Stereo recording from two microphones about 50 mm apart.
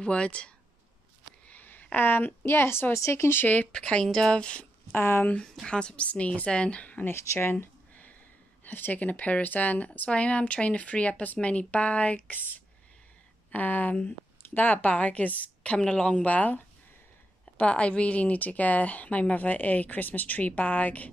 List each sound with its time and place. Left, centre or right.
0.0 s speech: left
1.5 s a sound: left
2.0 s a woman's voice: left
3.0 s speech: left
3.3 s speech: left
3.7 s speech: centre
4.9 s a woman's voice: left
5.7 s speech: left
7.1 s a woman's voice: left
7.9 s a sound: left
8.7 s speech: left
12.4 s speech: left; by 16.3 s centre
16.3 s speech: left